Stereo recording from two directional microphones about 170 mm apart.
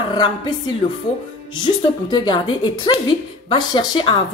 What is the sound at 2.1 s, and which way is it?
A woman's voice, 25° left (ahead or behind).